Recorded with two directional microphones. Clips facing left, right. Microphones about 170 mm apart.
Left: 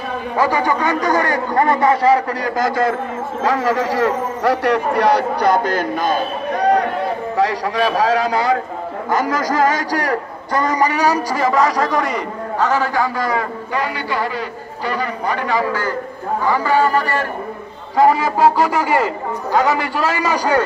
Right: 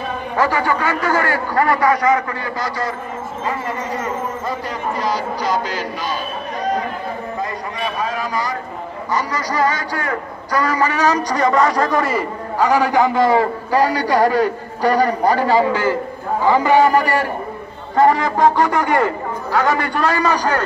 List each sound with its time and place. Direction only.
0.4 s a man's voice: 15° left (ahead or behind); by 2.5 s 30° left (ahead or behind)
2.5 s speech: 50° left (ahead or behind)
3.4 s a man's voice: 90° left; by 6.9 s 65° left (ahead or behind)
7.3 s a man's voice: 90° left; by 8.5 s 70° left (ahead or behind)
9.5 s speech: 45° left (ahead or behind)
10.5 s a man's voice: 20° left (ahead or behind); by 15.7 s 30° right (ahead or behind)
15.7 s a man's voice: 15° right (ahead or behind)
17.9 s a man's voice: 5° left (ahead or behind)